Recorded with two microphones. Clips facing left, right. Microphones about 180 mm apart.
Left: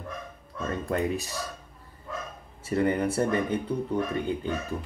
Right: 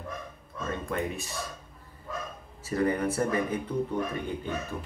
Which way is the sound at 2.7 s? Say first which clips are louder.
Left 2 dB; 30° left (ahead or behind).